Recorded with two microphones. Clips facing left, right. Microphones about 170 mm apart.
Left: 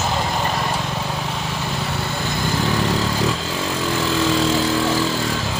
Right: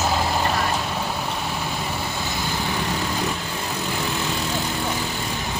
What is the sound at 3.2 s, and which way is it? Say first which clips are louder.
Vehicle: left 5 dB; 90° left.